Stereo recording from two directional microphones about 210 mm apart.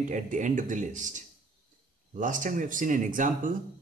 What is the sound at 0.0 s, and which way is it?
Speech, 35° right (ahead or behind).